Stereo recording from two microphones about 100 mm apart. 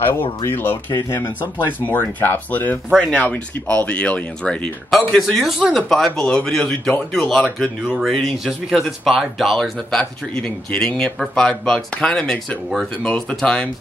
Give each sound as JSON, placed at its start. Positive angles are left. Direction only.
{"t": 0.5, "sound": "speech", "side_deg": 20}